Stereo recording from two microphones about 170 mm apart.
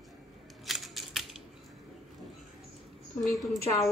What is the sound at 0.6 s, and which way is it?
Scissors, centre (ahead or behind).